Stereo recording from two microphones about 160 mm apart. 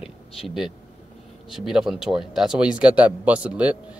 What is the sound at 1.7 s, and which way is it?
A man's voice, 5° right (ahead or behind).